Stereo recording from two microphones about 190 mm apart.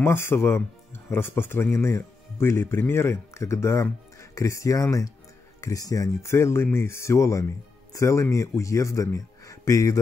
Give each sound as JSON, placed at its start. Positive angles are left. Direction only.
{"t": 0.0, "sound": "speech", "side_deg": 15}